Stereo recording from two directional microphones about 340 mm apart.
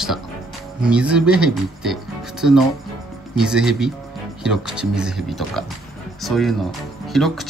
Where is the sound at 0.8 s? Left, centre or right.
Centre.